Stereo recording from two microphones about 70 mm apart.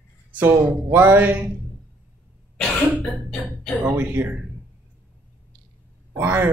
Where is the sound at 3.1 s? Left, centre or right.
Centre.